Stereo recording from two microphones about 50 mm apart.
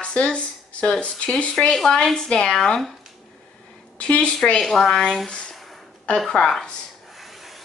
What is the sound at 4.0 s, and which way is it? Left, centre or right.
Speech, left.